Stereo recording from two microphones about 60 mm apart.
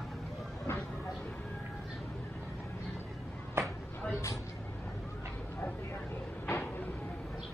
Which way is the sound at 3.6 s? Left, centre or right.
Right.